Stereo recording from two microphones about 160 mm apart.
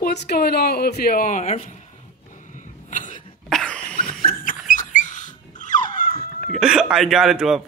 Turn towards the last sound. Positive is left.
turn(degrees=-5)  # may be behind; listen again after turning